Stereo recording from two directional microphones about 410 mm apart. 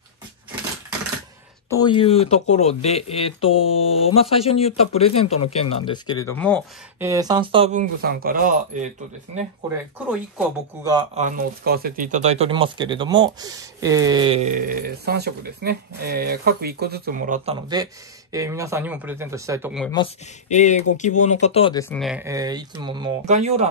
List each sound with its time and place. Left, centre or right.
1.7 s speech: centre
19.9 s speech: centre